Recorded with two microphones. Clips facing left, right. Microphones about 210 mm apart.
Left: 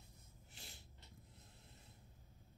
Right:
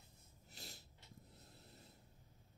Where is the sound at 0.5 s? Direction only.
40° right (ahead or behind).